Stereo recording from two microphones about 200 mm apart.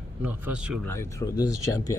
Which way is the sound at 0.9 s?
15° left (ahead or behind).